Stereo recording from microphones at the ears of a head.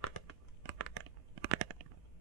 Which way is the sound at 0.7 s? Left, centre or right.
Right.